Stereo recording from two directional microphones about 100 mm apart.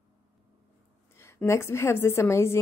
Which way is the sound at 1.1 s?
25° left (ahead or behind).